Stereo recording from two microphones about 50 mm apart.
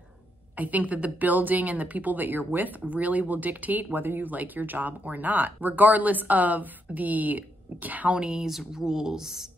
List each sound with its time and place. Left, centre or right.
0.6 s a woman's voice: right
8.1 s speech: centre
8.5 s speech: centre